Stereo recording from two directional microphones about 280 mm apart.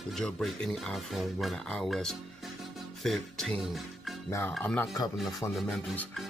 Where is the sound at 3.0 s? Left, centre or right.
Centre.